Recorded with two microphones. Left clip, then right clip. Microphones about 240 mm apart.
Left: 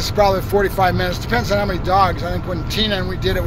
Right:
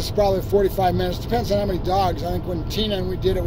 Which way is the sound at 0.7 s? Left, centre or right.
Centre.